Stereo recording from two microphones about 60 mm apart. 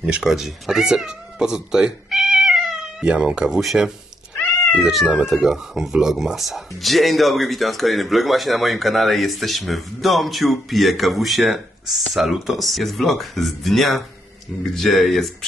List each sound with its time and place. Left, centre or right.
0.2 s speech: centre
5.0 s speech: centre